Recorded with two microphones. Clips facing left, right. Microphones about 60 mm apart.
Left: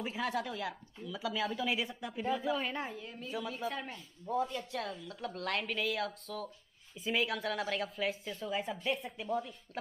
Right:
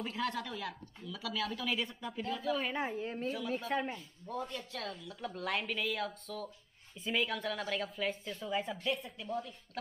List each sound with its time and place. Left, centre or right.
0.0 s speech: centre
2.5 s speech: centre
3.0 s a woman's voice: right
3.7 s speech: centre
4.3 s speech: centre